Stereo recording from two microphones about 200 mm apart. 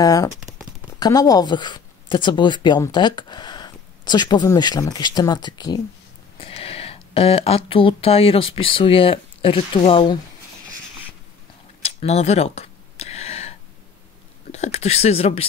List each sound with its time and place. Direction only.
0.0 s speech: 15° left (ahead or behind)
11.8 s a sound: 30° left (ahead or behind)
14.5 s speech: 35° left (ahead or behind)